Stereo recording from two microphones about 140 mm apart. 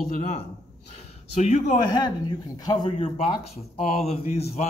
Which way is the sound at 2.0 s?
30° left (ahead or behind).